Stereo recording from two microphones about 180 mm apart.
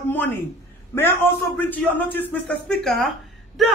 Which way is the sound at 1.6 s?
10° left (ahead or behind).